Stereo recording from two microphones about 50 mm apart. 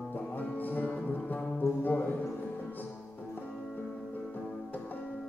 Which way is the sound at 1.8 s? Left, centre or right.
Left.